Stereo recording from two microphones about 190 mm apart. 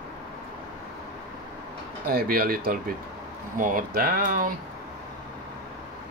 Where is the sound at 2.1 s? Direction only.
50° right (ahead or behind).